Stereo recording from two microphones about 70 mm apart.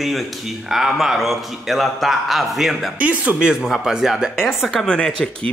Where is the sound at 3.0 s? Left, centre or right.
Centre.